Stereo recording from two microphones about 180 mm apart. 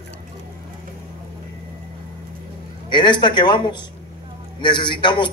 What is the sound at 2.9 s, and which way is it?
A man's voice, 25° left (ahead or behind).